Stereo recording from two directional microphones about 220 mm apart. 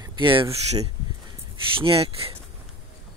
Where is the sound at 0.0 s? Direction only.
20° right (ahead or behind).